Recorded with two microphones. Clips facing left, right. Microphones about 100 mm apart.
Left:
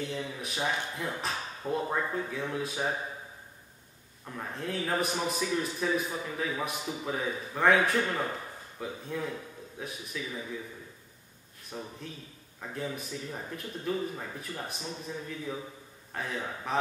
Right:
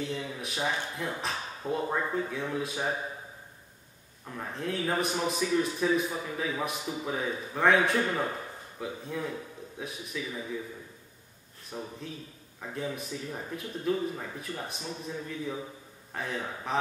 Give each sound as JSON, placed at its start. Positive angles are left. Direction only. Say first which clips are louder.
{"t": 0.0, "sound": "a man's voice", "louder": "right 1 dB", "side_deg": 0}
{"t": 4.3, "sound": "a man's voice", "louder": "right 1 dB", "side_deg": 0}
{"t": 11.7, "sound": "a man's voice", "louder": "right 2 dB", "side_deg": -5}